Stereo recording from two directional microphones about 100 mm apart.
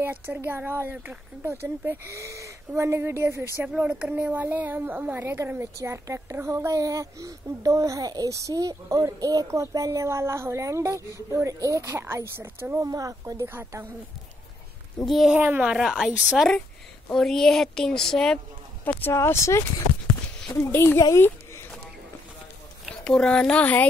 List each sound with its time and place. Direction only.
0.0 s a woman's voice: 20° right (ahead or behind)
3.6 s a woman's voice: 10° right (ahead or behind)
12.8 s speech: 35° right (ahead or behind)
13.5 s a woman's voice: 25° right (ahead or behind)
15.0 s a woman's voice: centre (ahead or behind)
15.3 s a woman's voice: 15° right (ahead or behind)
15.7 s a woman's voice: 5° right (ahead or behind)
16.3 s a woman's voice: 5° left (ahead or behind)
18.9 s speech: 20° left (ahead or behind)
21.1 s a sound: 25° left (ahead or behind)
22.8 s a child's voice: 5° left (ahead or behind)